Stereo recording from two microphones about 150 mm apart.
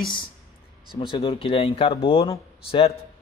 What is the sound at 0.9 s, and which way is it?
A man's voice, 30° left (ahead or behind).